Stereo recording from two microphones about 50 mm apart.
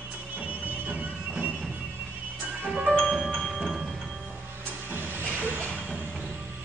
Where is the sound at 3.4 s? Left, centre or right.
Centre.